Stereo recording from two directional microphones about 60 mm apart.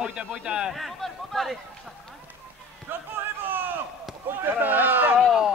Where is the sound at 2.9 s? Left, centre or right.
Right.